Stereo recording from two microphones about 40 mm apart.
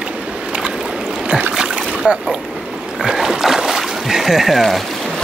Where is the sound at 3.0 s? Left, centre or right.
Centre.